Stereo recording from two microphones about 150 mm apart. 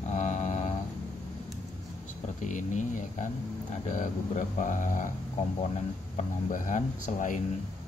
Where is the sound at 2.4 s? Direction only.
60° left (ahead or behind).